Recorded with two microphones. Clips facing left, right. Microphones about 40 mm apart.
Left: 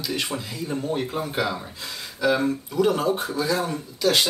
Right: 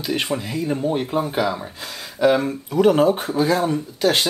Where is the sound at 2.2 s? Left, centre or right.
Right.